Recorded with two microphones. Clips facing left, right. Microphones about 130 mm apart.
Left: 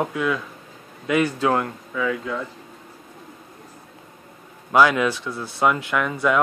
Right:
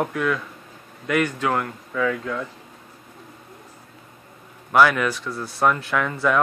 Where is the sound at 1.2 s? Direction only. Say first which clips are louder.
Left 2 dB; 25° left (ahead or behind).